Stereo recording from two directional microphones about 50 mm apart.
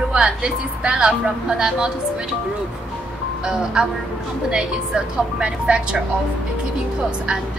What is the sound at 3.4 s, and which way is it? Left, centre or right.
A woman's voice, centre.